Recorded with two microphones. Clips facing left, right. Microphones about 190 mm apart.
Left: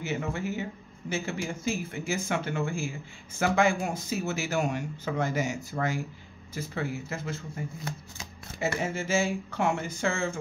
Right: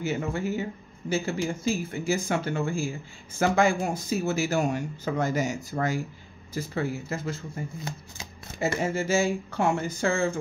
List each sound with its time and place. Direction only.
0.0 s speech: 35° right (ahead or behind)
8.5 s speech: 35° right (ahead or behind)